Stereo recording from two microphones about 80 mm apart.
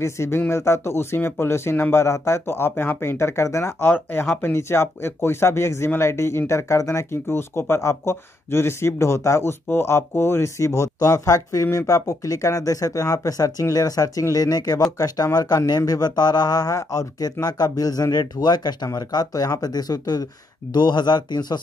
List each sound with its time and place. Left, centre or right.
0.0 s speech: left
3.8 s speech: left
20.7 s speech: left